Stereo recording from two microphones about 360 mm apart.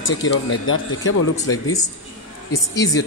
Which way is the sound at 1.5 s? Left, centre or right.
Centre.